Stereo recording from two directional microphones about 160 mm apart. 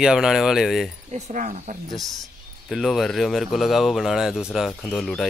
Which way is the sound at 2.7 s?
Centre (ahead or behind).